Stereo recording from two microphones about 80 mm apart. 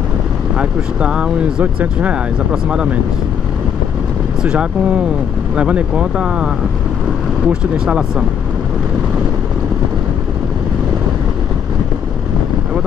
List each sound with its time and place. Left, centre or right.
0.6 s speech: centre
4.4 s speech: centre